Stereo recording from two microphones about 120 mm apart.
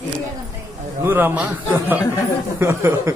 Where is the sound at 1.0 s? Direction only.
15° right (ahead or behind).